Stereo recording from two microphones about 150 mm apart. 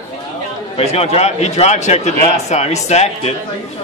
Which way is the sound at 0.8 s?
45° left (ahead or behind).